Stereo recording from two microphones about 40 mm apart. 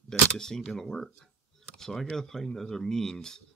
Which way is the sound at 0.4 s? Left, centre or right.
Centre.